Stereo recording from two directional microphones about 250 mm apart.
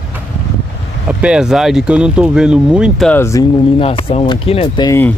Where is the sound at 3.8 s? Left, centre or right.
Left.